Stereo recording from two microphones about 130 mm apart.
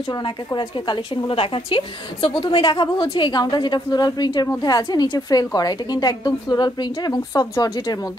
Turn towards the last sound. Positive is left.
turn(degrees=30)  # may be behind; listen again after turning